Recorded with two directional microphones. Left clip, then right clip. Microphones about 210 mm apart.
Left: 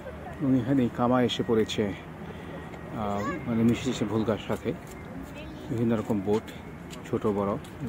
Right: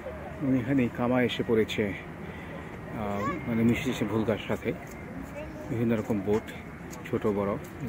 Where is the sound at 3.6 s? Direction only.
10° left (ahead or behind).